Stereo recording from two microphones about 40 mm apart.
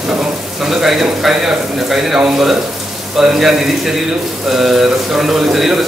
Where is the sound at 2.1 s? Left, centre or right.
Right.